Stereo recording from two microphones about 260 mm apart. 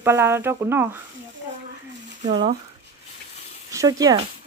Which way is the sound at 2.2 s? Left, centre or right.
Right.